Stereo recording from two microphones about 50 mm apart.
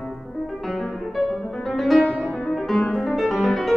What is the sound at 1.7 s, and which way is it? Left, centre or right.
Music, centre.